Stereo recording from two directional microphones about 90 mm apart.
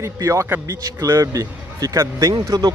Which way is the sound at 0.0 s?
35° right (ahead or behind).